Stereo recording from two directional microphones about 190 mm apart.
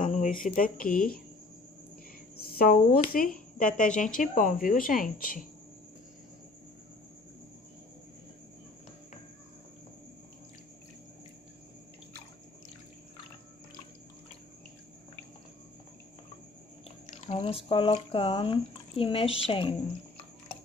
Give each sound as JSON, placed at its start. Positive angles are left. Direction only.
{"t": 0.0, "sound": "speech", "side_deg": 40}
{"t": 2.4, "sound": "speech", "side_deg": 55}
{"t": 17.0, "sound": "speech", "side_deg": 35}